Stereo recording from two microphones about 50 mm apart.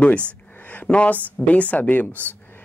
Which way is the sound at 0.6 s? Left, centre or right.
Left.